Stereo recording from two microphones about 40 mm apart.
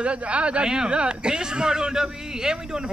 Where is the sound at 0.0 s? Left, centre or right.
Right.